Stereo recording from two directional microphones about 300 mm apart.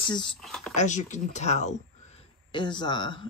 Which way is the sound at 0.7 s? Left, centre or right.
Left.